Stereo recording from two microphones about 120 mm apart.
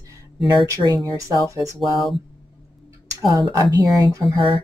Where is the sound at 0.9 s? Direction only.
30° right (ahead or behind).